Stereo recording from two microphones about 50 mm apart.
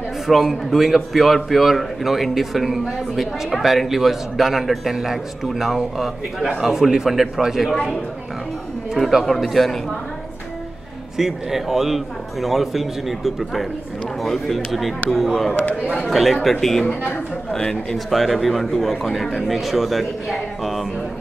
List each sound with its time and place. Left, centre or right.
0.3 s a man's voice: centre
8.9 s a man's voice: centre
11.1 s a man's voice: centre
17.5 s speech: centre
17.9 s a man's voice: centre